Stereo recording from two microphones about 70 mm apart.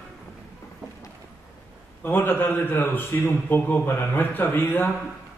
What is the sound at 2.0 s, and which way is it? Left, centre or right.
A man's voice, left.